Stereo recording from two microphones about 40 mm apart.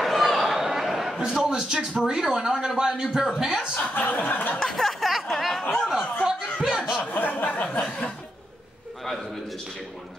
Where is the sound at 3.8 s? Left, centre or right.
Left.